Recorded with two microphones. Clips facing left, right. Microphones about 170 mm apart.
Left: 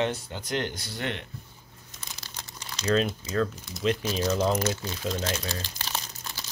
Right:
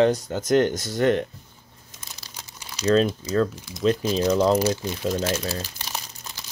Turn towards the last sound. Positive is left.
turn(degrees=-15)  # may be behind; listen again after turning